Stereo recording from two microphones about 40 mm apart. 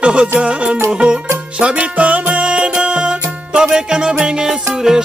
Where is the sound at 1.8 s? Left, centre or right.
Right.